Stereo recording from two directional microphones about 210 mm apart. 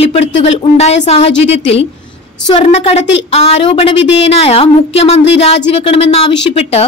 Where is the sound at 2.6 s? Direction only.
30° left (ahead or behind).